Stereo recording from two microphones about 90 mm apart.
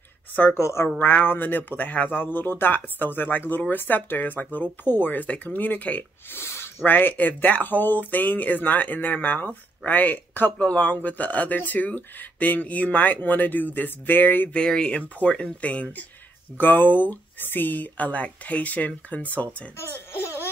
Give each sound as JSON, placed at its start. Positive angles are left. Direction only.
{"t": 0.6, "sound": "speech", "side_deg": 35}
{"t": 0.8, "sound": "speech", "side_deg": 20}
{"t": 19.8, "sound": "speech", "side_deg": 25}